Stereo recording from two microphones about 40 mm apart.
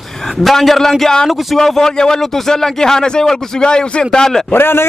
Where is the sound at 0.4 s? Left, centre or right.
Centre.